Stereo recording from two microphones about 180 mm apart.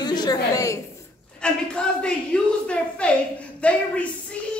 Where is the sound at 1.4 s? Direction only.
5° left (ahead or behind).